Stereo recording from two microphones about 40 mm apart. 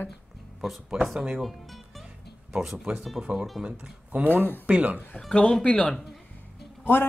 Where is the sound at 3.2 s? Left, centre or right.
Right.